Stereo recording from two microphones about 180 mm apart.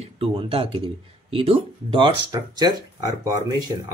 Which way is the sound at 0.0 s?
35° right (ahead or behind).